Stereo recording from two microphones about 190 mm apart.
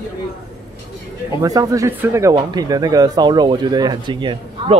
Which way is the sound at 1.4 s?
15° right (ahead or behind).